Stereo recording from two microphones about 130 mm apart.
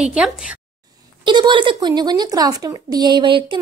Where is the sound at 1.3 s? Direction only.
35° right (ahead or behind).